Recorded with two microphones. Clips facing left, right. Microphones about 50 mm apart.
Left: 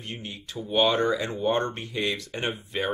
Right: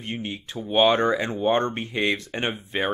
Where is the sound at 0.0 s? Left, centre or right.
Right.